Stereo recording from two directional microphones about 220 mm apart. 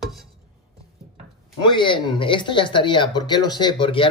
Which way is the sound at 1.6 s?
20° left (ahead or behind).